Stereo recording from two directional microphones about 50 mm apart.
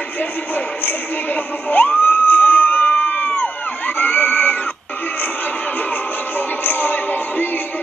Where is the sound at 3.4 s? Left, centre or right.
Left.